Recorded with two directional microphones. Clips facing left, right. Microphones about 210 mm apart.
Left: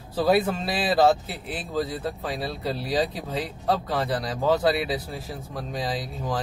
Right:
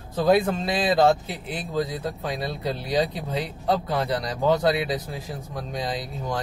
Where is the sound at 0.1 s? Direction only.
5° left (ahead or behind).